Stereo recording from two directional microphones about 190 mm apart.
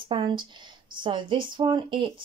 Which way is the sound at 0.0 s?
25° right (ahead or behind).